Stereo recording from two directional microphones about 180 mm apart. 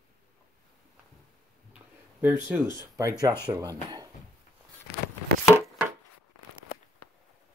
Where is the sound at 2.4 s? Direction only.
15° right (ahead or behind).